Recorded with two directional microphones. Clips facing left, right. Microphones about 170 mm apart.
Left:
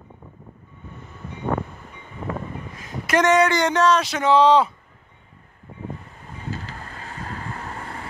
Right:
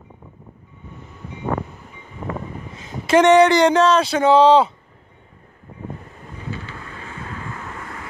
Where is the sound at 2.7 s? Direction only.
25° right (ahead or behind).